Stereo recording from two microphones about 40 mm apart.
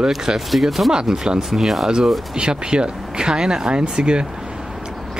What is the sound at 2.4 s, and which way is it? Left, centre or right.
Speech, right.